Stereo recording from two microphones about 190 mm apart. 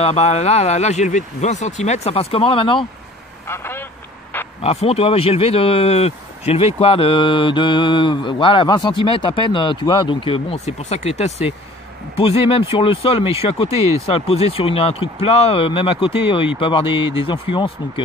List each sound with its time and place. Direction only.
0.0 s speech: 35° left (ahead or behind)
3.4 s speech: 10° left (ahead or behind)
4.6 s speech: 30° left (ahead or behind)